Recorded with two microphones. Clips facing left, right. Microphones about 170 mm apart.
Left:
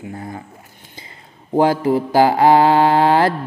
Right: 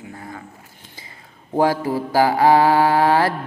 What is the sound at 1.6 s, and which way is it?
Mantra, 20° left (ahead or behind).